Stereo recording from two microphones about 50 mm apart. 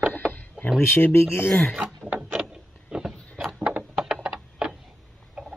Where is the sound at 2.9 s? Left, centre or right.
Centre.